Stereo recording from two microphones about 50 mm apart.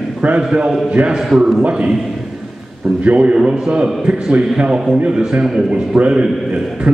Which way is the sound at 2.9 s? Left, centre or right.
Right.